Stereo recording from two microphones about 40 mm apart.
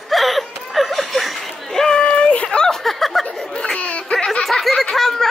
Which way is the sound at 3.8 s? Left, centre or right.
Left.